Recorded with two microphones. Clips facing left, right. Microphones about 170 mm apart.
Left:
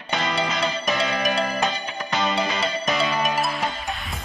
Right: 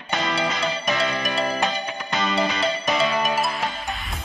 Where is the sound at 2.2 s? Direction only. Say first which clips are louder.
Right 1 dB; centre (ahead or behind).